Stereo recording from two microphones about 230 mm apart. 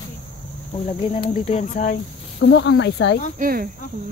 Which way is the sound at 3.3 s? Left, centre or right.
Right.